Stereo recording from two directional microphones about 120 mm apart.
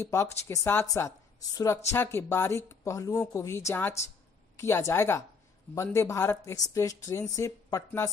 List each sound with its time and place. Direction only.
0.0 s speech: 25° left (ahead or behind)